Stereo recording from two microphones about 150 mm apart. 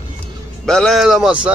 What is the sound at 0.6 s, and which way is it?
Speech, 5° left (ahead or behind).